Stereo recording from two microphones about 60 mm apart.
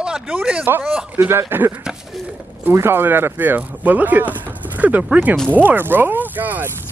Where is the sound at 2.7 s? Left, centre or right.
Right.